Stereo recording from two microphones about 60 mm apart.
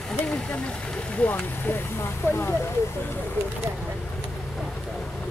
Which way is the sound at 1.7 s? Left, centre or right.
Left.